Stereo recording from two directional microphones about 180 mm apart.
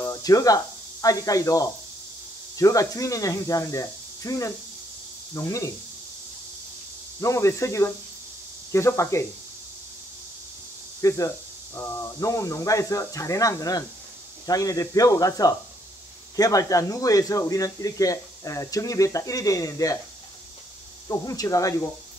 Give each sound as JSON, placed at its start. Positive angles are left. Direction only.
{"t": 0.0, "sound": "speech", "side_deg": 20}
{"t": 7.2, "sound": "speech", "side_deg": 15}
{"t": 11.0, "sound": "speech", "side_deg": 20}
{"t": 21.1, "sound": "speech", "side_deg": 20}